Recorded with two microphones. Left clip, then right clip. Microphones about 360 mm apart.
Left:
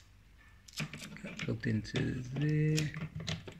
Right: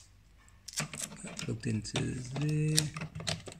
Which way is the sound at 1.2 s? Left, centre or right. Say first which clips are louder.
Left 1 dB; centre.